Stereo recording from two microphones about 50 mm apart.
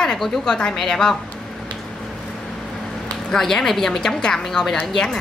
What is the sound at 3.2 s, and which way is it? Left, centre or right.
A woman's voice, centre.